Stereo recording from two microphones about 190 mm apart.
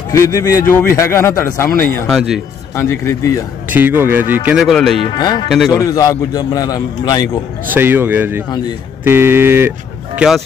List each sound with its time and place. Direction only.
0.1 s a man's voice: 15° left (ahead or behind); by 2.4 s centre (ahead or behind)
2.7 s a man's voice: 15° left (ahead or behind)
3.7 s speech: 10° right (ahead or behind)
5.0 s a man's voice: 25° left (ahead or behind)
7.6 s speech: 10° right (ahead or behind)